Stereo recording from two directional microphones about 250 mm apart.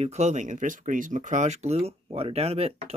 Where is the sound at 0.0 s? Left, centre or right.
Right.